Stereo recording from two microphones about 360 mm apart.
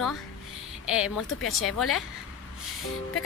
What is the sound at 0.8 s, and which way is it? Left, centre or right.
A woman's voice, centre.